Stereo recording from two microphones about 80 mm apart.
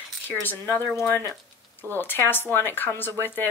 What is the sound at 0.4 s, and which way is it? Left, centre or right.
Speech, left.